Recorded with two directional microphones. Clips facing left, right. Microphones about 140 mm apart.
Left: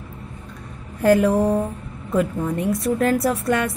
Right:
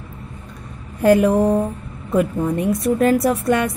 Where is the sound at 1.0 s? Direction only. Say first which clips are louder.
Right 2 dB; 20° right (ahead or behind).